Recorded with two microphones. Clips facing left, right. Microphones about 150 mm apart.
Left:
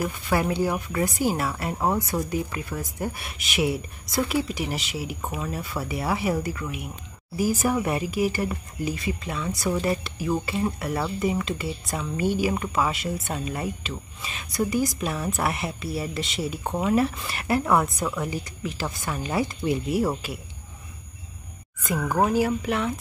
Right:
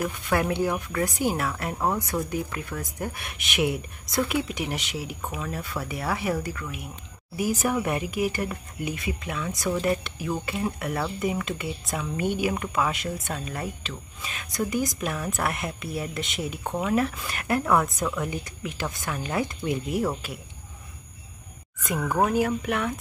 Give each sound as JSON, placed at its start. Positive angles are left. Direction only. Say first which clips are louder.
{"t": 0.0, "sound": "speech", "louder": "left 1 dB", "side_deg": 5}
{"t": 12.2, "sound": "speech", "louder": "left 3 dB", "side_deg": -55}
{"t": 12.4, "sound": "speech", "louder": "left 1 dB", "side_deg": 5}
{"t": 22.0, "sound": "speech", "louder": "left 1 dB", "side_deg": 5}